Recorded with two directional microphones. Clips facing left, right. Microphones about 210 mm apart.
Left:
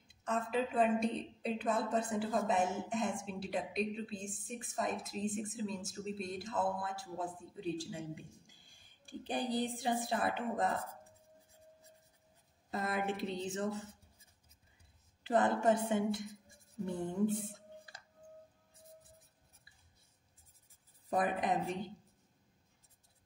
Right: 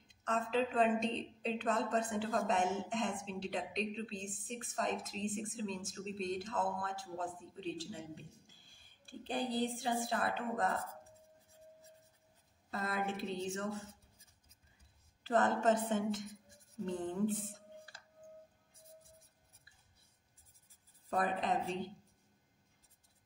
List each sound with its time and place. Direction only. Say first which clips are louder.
0.1 s a woman's voice: even; 10° left (ahead or behind)
12.7 s a woman's voice: left 2 dB; 15° left (ahead or behind)
15.2 s a woman's voice: left 1 dB; 15° left (ahead or behind)
21.1 s a woman's voice: left 2 dB; 15° left (ahead or behind)